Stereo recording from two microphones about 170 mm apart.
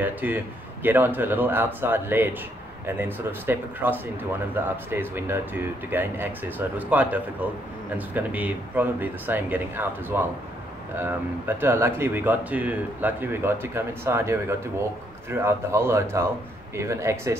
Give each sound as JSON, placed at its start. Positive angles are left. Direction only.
{"t": 0.0, "sound": "speech", "side_deg": -10}